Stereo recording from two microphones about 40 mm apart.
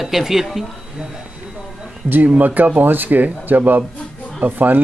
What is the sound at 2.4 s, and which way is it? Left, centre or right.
Speech, right.